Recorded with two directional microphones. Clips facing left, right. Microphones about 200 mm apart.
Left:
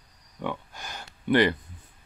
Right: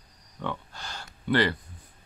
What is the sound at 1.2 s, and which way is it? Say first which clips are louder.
Speech: left 3 dB; 20° left (ahead or behind).